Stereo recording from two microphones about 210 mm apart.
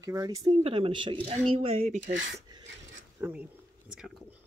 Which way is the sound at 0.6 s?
25° right (ahead or behind).